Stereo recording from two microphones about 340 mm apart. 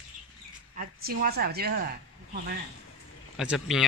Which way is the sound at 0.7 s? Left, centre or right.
Right.